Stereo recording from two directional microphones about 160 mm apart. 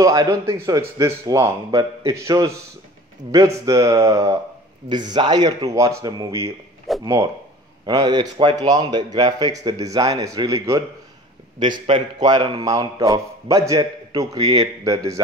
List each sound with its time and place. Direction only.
0.0 s a man's voice: 20° right (ahead or behind)
6.9 s a sound: centre (ahead or behind)
7.8 s a man's voice: 25° right (ahead or behind)